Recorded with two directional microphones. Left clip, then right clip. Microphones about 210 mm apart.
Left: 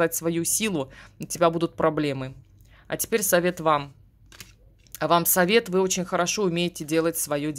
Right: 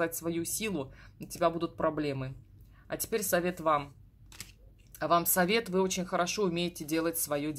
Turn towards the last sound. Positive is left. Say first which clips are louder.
# left 6 dB
turn(degrees=35)  # may be behind; listen again after turning